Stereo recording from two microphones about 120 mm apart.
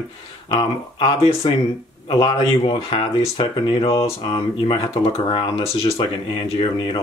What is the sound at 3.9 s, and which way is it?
Speech, 35° left (ahead or behind).